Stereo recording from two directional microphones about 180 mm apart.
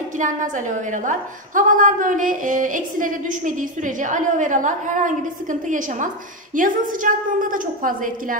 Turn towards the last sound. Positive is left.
turn(degrees=-50)  # may be behind; listen again after turning